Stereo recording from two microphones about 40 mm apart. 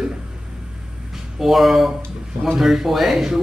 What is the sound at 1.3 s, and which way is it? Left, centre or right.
A man's voice, centre.